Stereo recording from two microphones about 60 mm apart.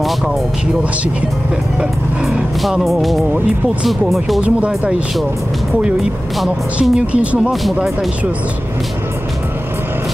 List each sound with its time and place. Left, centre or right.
1.8 s speech: centre
4.4 s a woman's voice: right
6.8 s a woman's voice: right